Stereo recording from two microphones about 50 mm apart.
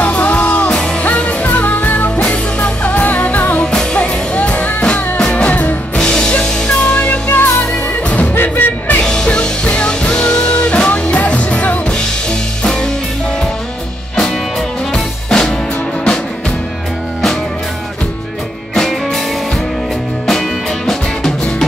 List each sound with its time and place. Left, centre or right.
0.0 s music: left
0.7 s music: centre
1.0 s music: left
2.1 s music: left
3.5 s music: centre
5.9 s music: centre; by 9.0 s left
9.0 s music: centre
11.9 s music: centre
14.9 s music: centre
18.8 s music: centre
20.2 s music: centre